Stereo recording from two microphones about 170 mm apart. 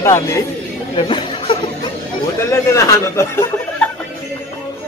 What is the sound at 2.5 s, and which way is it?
Speech, 20° left (ahead or behind).